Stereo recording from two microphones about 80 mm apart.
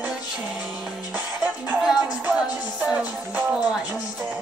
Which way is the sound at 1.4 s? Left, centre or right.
Centre.